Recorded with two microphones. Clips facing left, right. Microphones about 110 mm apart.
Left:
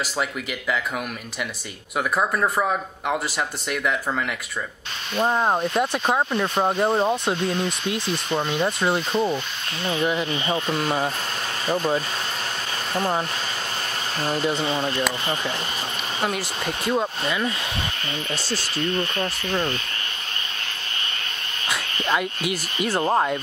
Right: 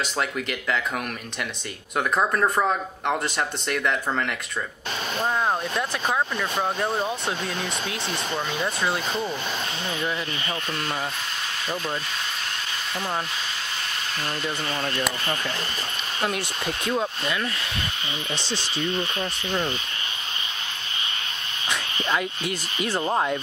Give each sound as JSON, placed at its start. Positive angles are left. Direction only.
{"t": 0.2, "sound": "speech", "side_deg": 5}
{"t": 2.0, "sound": "speech", "side_deg": 5}
{"t": 5.2, "sound": "speech", "side_deg": 20}
{"t": 9.8, "sound": "speech", "side_deg": 20}
{"t": 14.3, "sound": "speech", "side_deg": 30}
{"t": 14.8, "sound": "speech", "side_deg": 15}
{"t": 16.2, "sound": "speech", "side_deg": 0}
{"t": 19.1, "sound": "speech", "side_deg": 0}
{"t": 21.6, "sound": "speech", "side_deg": 5}